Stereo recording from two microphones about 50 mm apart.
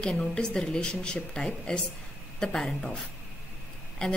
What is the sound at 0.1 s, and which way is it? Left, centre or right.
A woman's voice, left.